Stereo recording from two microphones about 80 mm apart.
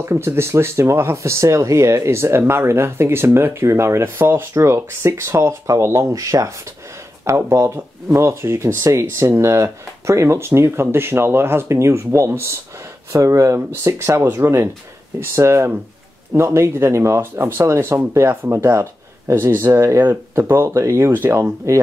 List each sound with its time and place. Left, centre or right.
0.0 s speech: right
13.6 s speech: right